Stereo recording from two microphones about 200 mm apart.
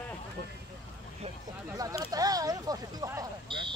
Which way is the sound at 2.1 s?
20° right (ahead or behind).